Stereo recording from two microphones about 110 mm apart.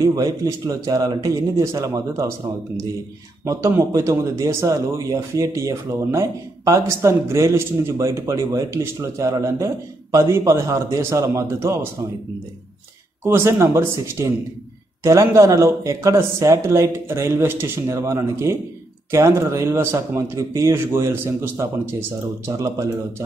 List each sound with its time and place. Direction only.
0.0 s speech: 30° right (ahead or behind)
3.4 s a man's voice: 25° right (ahead or behind)
13.2 s a man's voice: 25° right (ahead or behind)